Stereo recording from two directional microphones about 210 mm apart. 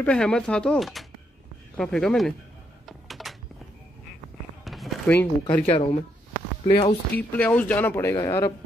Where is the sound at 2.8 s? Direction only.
Centre (ahead or behind).